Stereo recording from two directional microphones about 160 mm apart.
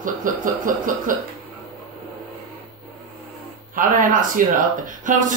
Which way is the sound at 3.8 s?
55° right (ahead or behind).